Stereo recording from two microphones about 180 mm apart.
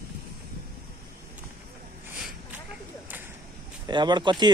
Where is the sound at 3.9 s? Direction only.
25° right (ahead or behind).